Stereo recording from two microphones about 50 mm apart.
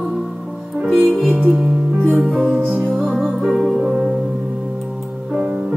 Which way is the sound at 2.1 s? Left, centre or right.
Centre.